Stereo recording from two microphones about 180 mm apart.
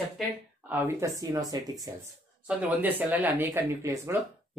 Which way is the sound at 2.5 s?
10° right (ahead or behind).